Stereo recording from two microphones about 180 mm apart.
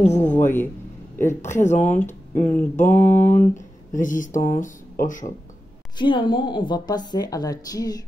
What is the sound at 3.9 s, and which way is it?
Speech, 45° left (ahead or behind).